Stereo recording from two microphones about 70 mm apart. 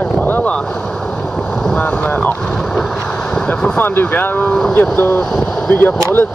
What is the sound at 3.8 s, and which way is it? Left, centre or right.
Speech, left.